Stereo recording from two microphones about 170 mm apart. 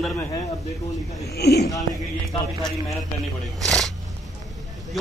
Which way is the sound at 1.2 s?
70° left (ahead or behind).